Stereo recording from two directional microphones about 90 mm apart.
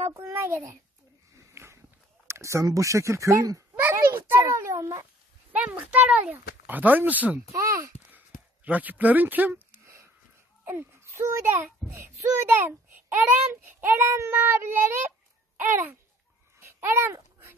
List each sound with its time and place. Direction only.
0.1 s speech: 30° right (ahead or behind)
1.3 s a sound: 30° right (ahead or behind)
2.2 s a child's voice: 30° right (ahead or behind)
5.5 s speech: 15° right (ahead or behind)
7.5 s speech: 35° right (ahead or behind)
8.6 s speech: 15° right (ahead or behind)
10.6 s a child's voice: 25° right (ahead or behind)
16.5 s babbling: 25° right (ahead or behind)